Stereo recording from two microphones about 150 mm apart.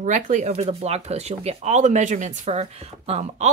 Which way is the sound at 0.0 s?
55° right (ahead or behind).